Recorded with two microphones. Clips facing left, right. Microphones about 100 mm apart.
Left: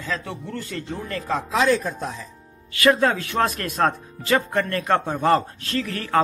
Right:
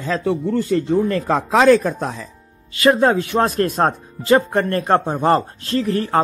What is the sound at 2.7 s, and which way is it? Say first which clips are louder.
Speech: right 4 dB; 30° right (ahead or behind).